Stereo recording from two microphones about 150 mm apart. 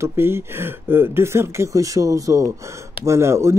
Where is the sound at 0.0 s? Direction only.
15° right (ahead or behind).